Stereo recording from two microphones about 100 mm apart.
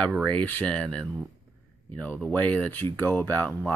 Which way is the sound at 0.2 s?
15° left (ahead or behind).